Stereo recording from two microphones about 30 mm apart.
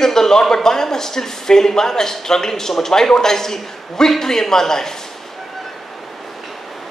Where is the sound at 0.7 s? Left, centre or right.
Centre.